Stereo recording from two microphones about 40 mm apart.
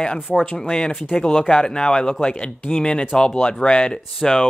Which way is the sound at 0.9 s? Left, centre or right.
Centre.